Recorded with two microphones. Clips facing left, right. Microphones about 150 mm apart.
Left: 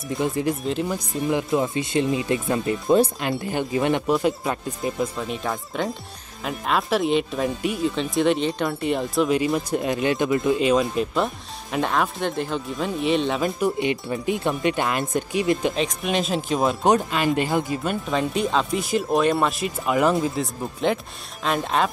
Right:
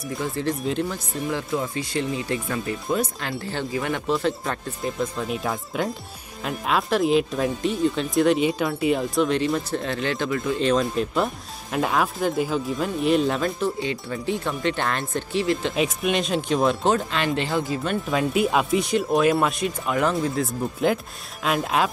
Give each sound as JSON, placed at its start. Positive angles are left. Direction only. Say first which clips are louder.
{"t": 0.2, "sound": "speech", "louder": "left 3 dB", "side_deg": 15}
{"t": 0.6, "sound": "speech", "louder": "even", "side_deg": 0}
{"t": 0.8, "sound": "speech", "louder": "left 3 dB", "side_deg": 15}
{"t": 4.1, "sound": "speech", "louder": "left 2 dB", "side_deg": 5}
{"t": 5.1, "sound": "speech", "louder": "right 1 dB", "side_deg": 0}
{"t": 10.6, "sound": "speech", "louder": "left 1 dB", "side_deg": 5}
{"t": 13.4, "sound": "speech", "louder": "left 2 dB", "side_deg": 15}
{"t": 15.7, "sound": "speech", "louder": "right 1 dB", "side_deg": -5}
{"t": 18.1, "sound": "speech", "louder": "right 1 dB", "side_deg": -5}
{"t": 18.8, "sound": "speech", "louder": "right 1 dB", "side_deg": 0}